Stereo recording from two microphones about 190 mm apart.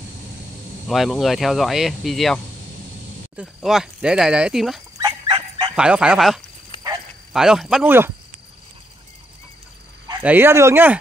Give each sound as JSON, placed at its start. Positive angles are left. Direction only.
{"t": 0.8, "sound": "speech", "side_deg": 0}
{"t": 4.9, "sound": "dog", "side_deg": -25}
{"t": 5.8, "sound": "speech", "side_deg": -5}
{"t": 10.2, "sound": "speech", "side_deg": -10}